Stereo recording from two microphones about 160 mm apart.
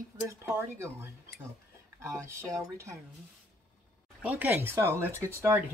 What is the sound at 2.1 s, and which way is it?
Speech, 15° right (ahead or behind).